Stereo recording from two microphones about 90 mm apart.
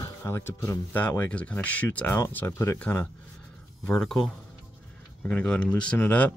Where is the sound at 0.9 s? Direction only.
20° left (ahead or behind).